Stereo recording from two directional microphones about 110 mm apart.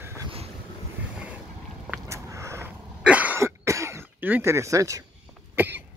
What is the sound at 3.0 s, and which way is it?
Cough, 10° right (ahead or behind).